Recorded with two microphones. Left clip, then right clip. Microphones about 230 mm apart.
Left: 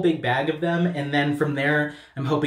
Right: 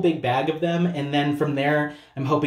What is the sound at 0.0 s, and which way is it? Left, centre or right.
Speech, centre.